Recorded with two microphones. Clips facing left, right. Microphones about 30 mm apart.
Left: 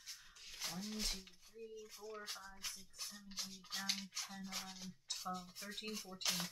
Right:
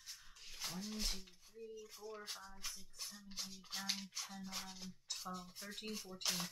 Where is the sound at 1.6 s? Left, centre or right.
Centre.